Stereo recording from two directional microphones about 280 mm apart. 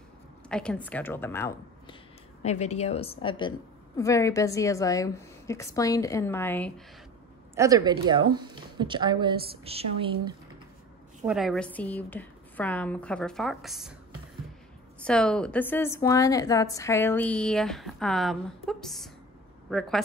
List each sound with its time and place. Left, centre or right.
0.5 s a woman's voice: centre
2.4 s a woman's voice: left; by 6.7 s centre
7.5 s speech: centre
11.2 s a woman's voice: centre
15.0 s a woman's voice: centre